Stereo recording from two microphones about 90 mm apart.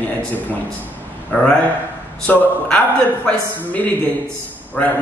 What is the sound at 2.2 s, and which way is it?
A man's voice, 10° left (ahead or behind).